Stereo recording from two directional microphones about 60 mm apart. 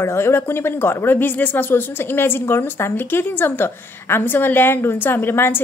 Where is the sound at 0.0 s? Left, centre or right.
Left.